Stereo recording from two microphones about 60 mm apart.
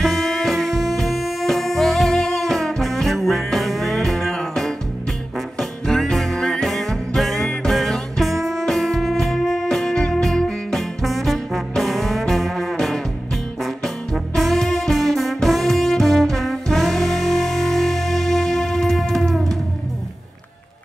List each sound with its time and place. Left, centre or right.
0.0 s music: centre